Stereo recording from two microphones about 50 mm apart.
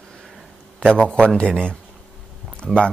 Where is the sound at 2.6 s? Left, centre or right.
Centre.